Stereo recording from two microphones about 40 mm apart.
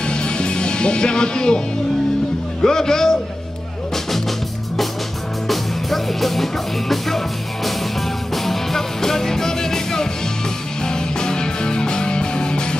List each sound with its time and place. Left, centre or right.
0.0 s music: left
2.6 s a man's voice: centre
5.5 s music: centre
8.4 s music: centre